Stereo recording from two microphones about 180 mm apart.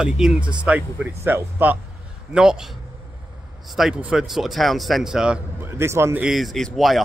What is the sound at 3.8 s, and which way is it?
Speech, 5° right (ahead or behind).